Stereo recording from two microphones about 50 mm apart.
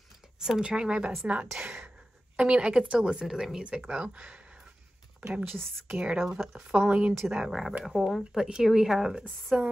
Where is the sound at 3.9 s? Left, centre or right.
Right.